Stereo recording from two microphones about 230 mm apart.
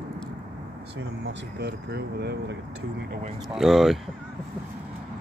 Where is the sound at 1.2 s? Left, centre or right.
Right.